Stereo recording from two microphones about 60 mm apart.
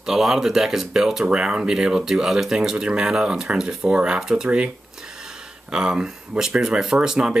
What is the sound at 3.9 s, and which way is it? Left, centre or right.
Speech, centre.